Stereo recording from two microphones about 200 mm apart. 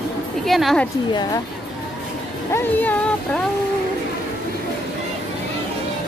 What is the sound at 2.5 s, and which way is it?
Speech, 10° left (ahead or behind).